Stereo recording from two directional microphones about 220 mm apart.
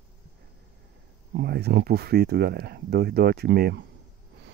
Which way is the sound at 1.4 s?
50° right (ahead or behind).